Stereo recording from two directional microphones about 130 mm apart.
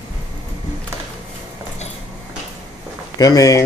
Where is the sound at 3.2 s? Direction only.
25° left (ahead or behind).